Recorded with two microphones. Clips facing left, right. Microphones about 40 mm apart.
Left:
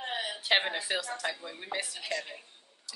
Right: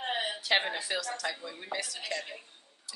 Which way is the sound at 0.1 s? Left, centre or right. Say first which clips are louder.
Right 3 dB; right.